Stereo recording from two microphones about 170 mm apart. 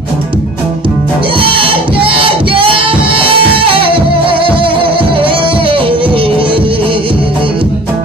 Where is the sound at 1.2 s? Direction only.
30° right (ahead or behind).